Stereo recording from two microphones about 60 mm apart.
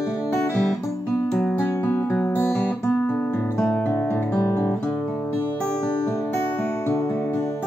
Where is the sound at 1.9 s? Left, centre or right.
Left.